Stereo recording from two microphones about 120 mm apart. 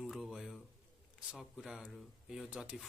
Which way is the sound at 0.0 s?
5° right (ahead or behind).